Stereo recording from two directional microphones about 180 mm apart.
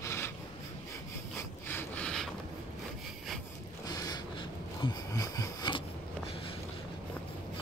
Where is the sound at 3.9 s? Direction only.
20° left (ahead or behind).